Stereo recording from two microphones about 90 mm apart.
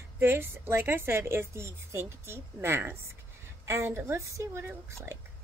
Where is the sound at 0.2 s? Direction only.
25° right (ahead or behind).